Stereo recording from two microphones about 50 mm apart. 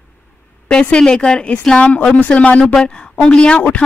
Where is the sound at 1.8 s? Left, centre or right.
Left.